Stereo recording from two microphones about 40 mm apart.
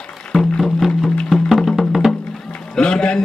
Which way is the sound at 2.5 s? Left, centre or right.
Left.